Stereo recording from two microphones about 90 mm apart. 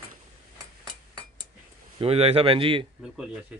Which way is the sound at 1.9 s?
90° right.